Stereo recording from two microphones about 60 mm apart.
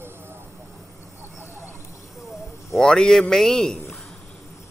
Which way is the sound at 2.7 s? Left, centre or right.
Centre.